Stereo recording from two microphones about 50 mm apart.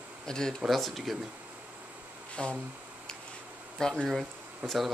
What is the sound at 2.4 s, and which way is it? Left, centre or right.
Speech, centre.